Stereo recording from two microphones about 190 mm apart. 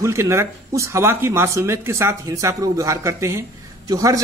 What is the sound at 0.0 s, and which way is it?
Speech, 15° right (ahead or behind).